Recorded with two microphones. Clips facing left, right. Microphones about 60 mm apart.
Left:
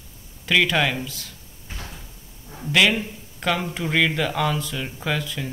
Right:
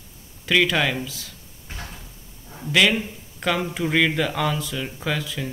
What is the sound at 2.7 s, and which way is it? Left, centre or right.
Speech, centre.